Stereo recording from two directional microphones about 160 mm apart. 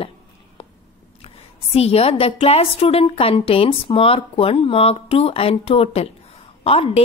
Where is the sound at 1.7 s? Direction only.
40° left (ahead or behind).